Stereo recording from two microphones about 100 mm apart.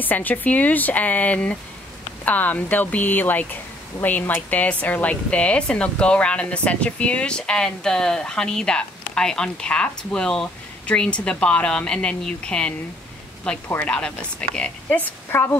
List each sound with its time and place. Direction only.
0.0 s speech: 15° left (ahead or behind)